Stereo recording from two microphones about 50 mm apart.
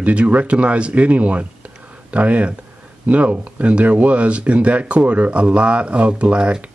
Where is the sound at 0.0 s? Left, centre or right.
Right.